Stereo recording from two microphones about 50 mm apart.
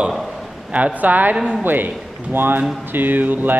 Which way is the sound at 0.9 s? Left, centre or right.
Right.